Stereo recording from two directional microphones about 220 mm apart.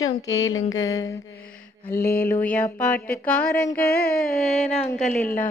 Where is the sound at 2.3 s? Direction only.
5° left (ahead or behind).